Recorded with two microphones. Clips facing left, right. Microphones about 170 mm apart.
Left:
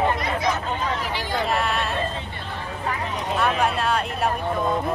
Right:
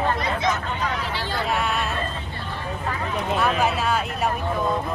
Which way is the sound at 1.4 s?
Centre (ahead or behind).